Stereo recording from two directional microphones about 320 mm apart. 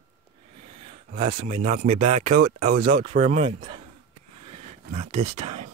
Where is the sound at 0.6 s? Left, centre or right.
Centre.